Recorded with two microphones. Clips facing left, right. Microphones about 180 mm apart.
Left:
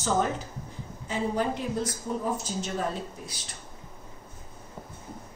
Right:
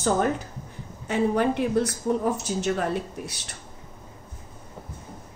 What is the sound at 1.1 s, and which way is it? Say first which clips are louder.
A woman's voice: right 6 dB; 65° right (ahead or behind).